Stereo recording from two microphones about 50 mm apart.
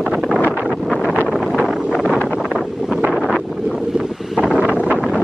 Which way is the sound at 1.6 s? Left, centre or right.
Centre.